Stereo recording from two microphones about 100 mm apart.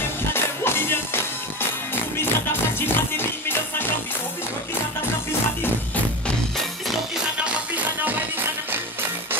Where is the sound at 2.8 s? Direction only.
20° left (ahead or behind).